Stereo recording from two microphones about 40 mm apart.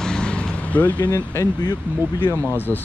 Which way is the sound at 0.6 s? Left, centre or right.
Left.